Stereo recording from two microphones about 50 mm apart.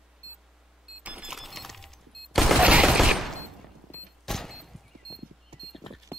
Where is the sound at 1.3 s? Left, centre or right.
Centre.